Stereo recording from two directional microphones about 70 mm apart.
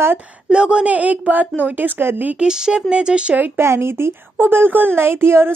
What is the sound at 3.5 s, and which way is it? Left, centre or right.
A woman's voice, right.